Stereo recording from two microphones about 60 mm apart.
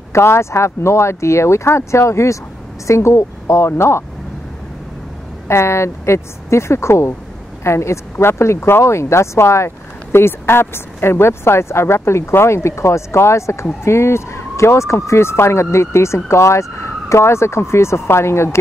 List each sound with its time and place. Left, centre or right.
0.1 s speech: left
5.5 s speech: left